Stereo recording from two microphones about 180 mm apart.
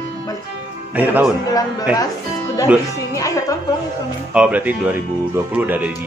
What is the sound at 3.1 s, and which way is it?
Speech, 20° left (ahead or behind).